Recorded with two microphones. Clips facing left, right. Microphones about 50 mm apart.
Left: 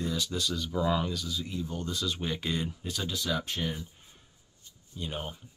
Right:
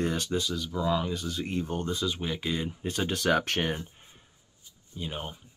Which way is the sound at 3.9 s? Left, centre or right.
Right.